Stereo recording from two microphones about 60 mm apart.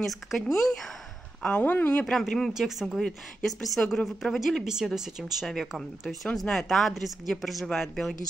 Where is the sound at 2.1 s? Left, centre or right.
Centre.